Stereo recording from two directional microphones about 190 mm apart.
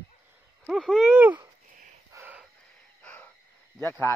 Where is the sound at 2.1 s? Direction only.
10° right (ahead or behind).